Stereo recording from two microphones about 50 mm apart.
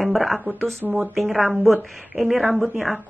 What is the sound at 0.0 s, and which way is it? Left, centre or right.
Speech, centre.